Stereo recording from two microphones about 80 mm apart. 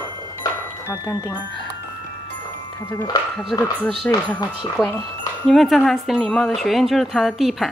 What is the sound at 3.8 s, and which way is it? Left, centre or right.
Speech, centre.